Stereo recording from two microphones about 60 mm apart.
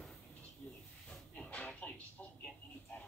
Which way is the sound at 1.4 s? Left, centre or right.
Left.